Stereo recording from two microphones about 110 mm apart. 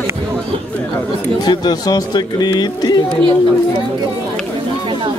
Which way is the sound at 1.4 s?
40° left (ahead or behind).